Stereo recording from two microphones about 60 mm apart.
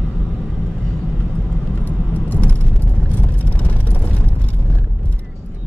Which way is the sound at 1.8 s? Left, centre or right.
Left.